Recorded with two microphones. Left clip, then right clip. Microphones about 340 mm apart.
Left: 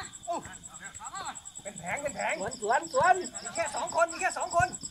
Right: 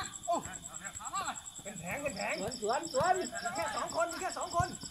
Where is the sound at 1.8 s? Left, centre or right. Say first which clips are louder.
Left 5 dB; left.